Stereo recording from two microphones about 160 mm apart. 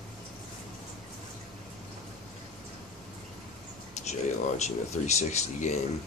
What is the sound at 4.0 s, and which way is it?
Speech, 45° left (ahead or behind).